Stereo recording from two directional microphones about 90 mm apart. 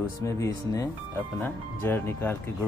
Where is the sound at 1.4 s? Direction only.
20° left (ahead or behind).